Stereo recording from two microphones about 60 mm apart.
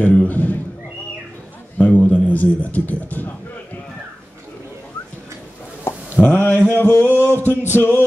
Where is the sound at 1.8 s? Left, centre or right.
Left.